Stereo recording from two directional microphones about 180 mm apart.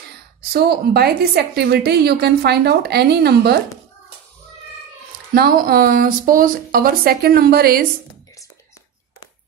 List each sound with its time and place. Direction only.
0.4 s a woman's voice: 60° right (ahead or behind)
5.3 s a woman's voice: 55° right (ahead or behind)